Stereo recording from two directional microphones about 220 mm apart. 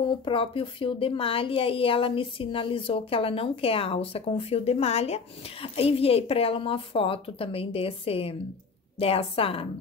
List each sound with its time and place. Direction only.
0.2 s speech: 25° left (ahead or behind)